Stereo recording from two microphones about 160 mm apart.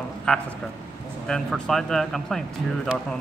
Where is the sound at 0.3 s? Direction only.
5° left (ahead or behind).